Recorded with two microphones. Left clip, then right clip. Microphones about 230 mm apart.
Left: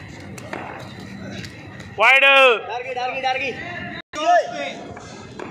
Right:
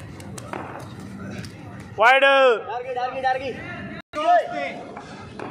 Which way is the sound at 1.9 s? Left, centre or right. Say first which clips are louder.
Left 2 dB; centre.